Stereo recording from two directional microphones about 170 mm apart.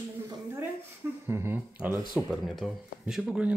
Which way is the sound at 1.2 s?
15° right (ahead or behind).